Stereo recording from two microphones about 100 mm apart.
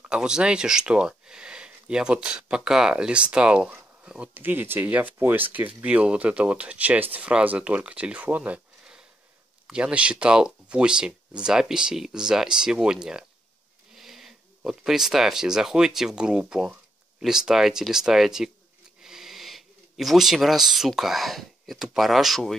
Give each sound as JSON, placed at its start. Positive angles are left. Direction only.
{"t": 0.1, "sound": "speech", "side_deg": -10}